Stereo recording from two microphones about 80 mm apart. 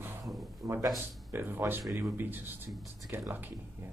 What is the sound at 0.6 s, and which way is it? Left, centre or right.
Speech, right.